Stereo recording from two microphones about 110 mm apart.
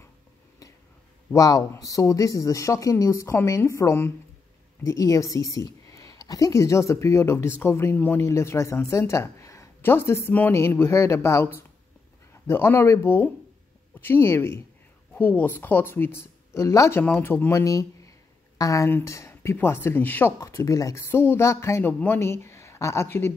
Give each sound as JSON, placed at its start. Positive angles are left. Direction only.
{"t": 1.3, "sound": "a woman's voice", "side_deg": 30}
{"t": 17.0, "sound": "a woman's voice", "side_deg": 15}
{"t": 20.3, "sound": "a woman's voice", "side_deg": 30}